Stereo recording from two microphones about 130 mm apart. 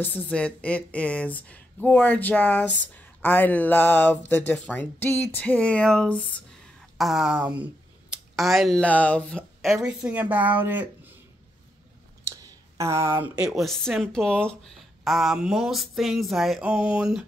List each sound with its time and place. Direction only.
0.0 s speech: 10° left (ahead or behind)
7.0 s speech: centre (ahead or behind)
8.4 s speech: centre (ahead or behind); by 10.9 s 15° right (ahead or behind)
12.3 s a sound: 20° right (ahead or behind)
13.4 s speech: centre (ahead or behind)